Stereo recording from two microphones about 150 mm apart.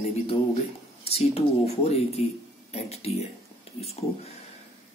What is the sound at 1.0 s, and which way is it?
Speech, 40° left (ahead or behind).